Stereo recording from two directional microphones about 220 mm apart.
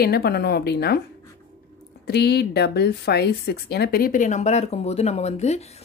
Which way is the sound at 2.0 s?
45° left (ahead or behind).